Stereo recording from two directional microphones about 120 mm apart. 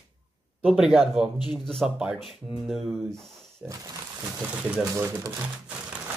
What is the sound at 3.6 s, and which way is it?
Speech, 10° right (ahead or behind).